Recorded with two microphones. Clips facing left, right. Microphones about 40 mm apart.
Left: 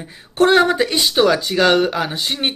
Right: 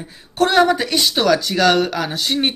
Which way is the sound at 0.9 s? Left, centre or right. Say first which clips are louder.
Left 1 dB; centre.